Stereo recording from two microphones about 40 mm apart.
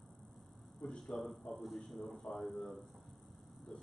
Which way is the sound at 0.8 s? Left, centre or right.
Centre.